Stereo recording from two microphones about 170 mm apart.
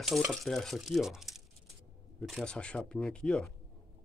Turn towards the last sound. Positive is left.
turn(degrees=5)  # may be behind; listen again after turning